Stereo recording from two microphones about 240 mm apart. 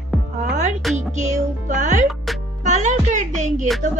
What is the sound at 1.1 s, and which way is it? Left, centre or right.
Speech, right.